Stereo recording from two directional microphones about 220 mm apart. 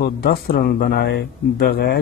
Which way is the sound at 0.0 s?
45° left (ahead or behind).